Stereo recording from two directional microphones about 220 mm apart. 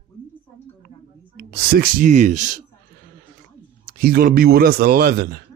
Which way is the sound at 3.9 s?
40° right (ahead or behind).